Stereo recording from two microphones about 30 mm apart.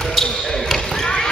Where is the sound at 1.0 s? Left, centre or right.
Centre.